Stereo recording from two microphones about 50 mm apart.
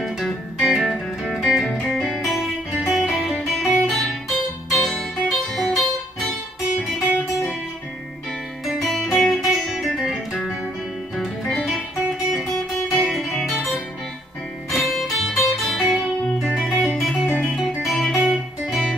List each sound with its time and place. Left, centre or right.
0.0 s music: centre
8.6 s music: centre
12.3 s guitar: centre
14.7 s music: centre